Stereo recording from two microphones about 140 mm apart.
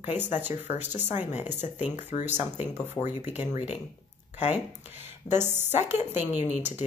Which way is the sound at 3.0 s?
15° left (ahead or behind).